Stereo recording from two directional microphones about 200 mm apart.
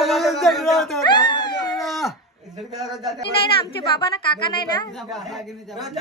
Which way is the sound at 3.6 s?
25° left (ahead or behind).